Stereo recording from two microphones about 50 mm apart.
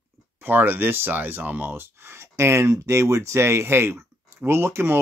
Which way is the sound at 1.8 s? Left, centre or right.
Right.